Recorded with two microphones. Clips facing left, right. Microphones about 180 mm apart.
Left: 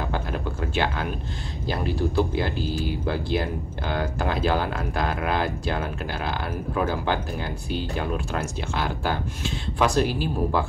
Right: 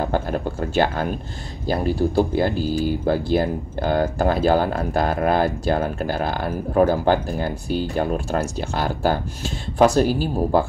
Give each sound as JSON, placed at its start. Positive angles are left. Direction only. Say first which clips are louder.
{"t": 0.0, "sound": "speech", "louder": "right 6 dB", "side_deg": -40}